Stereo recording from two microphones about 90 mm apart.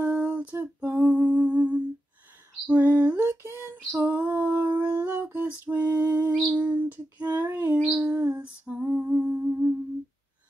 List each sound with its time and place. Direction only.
0.0 s music: 15° right (ahead or behind)
2.6 s female singing: 20° right (ahead or behind)
5.0 s lullaby: 20° right (ahead or behind)
6.5 s female singing: 15° right (ahead or behind)
7.8 s humming: 15° right (ahead or behind)